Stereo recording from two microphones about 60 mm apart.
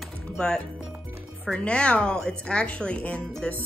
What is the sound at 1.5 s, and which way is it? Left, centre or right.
Speech, centre.